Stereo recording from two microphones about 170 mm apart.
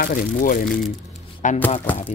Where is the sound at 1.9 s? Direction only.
10° left (ahead or behind).